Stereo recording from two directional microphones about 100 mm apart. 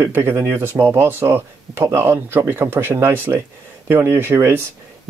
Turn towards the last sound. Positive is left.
turn(degrees=-25)  # may be behind; listen again after turning